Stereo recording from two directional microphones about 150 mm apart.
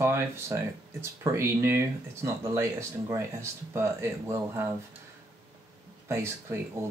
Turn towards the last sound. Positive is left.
turn(degrees=-20)  # may be behind; listen again after turning